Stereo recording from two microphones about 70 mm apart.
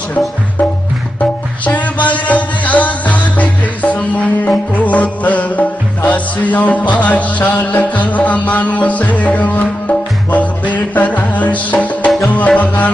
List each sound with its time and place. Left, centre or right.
1.7 s music: left